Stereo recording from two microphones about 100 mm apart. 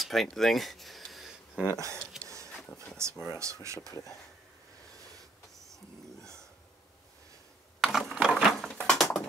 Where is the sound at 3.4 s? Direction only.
30° right (ahead or behind).